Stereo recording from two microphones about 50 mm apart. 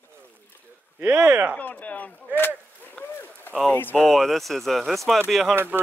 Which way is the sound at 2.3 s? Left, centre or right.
Right.